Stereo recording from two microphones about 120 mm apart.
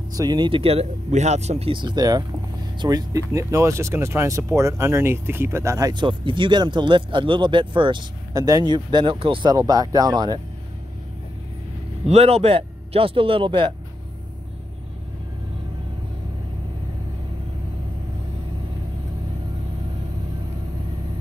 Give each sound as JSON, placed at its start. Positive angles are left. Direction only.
{"t": 0.1, "sound": "speech", "side_deg": -35}
{"t": 1.7, "sound": "speech", "side_deg": -40}
{"t": 8.4, "sound": "speech", "side_deg": -30}
{"t": 9.5, "sound": "speech", "side_deg": -30}
{"t": 12.1, "sound": "speech", "side_deg": -60}